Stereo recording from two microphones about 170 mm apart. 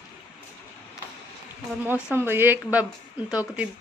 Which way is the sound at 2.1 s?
15° right (ahead or behind).